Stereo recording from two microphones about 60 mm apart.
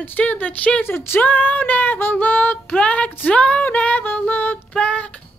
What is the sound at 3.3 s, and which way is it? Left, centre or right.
Female singing, left.